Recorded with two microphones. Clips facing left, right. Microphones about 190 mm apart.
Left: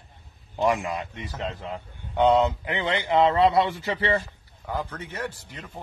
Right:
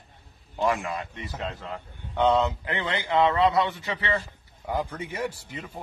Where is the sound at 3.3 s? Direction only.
30° left (ahead or behind).